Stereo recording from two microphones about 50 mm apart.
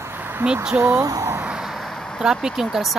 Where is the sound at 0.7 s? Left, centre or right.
Right.